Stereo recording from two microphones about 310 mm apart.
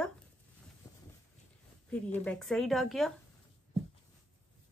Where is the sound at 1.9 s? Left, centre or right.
Centre.